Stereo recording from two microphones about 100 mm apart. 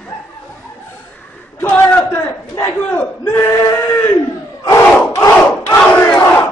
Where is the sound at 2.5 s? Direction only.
35° left (ahead or behind).